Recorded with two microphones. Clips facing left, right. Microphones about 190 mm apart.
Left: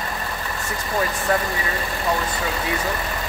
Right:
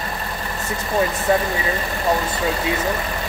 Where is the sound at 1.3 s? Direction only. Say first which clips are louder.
Right 3 dB; 20° right (ahead or behind).